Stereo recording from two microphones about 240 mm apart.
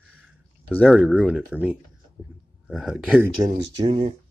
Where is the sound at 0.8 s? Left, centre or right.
Centre.